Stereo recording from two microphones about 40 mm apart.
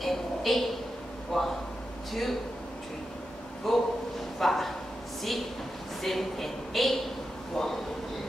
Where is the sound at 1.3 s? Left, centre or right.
Centre.